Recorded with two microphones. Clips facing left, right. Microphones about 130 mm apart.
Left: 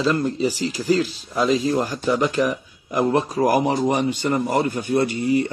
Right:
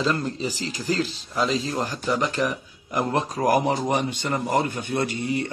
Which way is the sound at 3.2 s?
10° left (ahead or behind).